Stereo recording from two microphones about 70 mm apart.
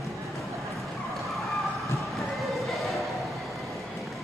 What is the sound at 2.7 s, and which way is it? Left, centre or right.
Music, centre.